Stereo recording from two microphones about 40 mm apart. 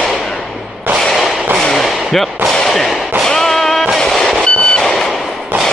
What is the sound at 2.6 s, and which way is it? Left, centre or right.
Whip, centre.